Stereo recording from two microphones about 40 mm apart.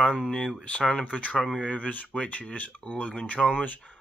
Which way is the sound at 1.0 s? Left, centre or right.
Left.